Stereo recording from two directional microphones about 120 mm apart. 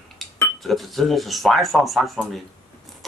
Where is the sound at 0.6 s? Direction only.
Centre (ahead or behind).